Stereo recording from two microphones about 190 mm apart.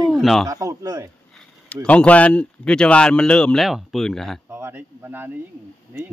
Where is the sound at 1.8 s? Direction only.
5° left (ahead or behind).